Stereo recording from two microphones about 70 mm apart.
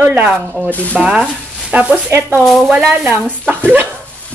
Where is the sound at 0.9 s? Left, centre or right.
Centre.